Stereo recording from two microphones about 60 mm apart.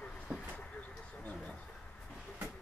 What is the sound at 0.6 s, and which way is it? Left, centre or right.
Vehicle, left.